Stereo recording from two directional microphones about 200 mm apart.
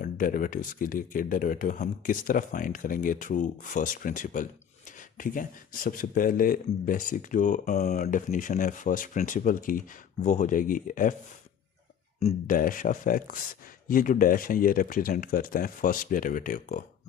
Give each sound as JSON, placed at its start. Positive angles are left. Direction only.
{"t": 0.0, "sound": "speech", "side_deg": 45}
{"t": 12.2, "sound": "speech", "side_deg": 35}